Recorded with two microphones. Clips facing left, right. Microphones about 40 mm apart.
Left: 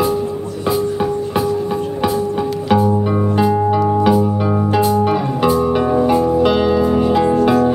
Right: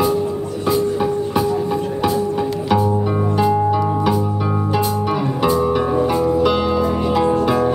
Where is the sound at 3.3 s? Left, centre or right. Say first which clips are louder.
Left 1 dB; centre.